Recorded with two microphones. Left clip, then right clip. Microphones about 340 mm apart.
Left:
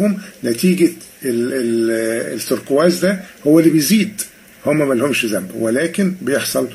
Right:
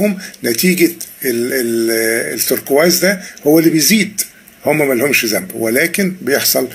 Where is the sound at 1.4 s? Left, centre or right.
Centre.